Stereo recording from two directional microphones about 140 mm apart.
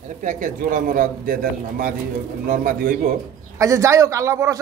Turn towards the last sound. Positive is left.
turn(degrees=-20)  # may be behind; listen again after turning